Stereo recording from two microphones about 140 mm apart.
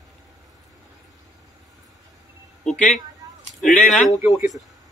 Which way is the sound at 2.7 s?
5° left (ahead or behind).